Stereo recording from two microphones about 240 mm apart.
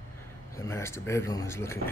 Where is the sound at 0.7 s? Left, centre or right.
Centre.